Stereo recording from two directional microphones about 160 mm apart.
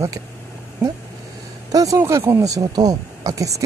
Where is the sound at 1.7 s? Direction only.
20° right (ahead or behind).